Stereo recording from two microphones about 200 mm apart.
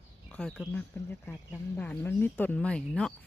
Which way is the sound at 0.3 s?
5° left (ahead or behind).